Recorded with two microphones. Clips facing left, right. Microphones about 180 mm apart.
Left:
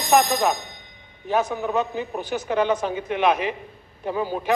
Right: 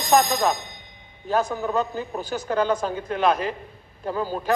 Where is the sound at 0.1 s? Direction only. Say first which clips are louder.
Left 1 dB; 10° left (ahead or behind).